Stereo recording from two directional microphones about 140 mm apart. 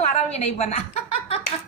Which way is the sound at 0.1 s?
50° left (ahead or behind).